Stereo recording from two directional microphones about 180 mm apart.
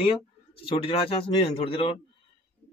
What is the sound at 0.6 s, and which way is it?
A man's voice, 30° left (ahead or behind).